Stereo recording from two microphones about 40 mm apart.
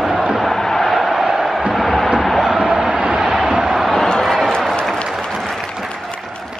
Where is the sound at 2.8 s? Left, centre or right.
Right.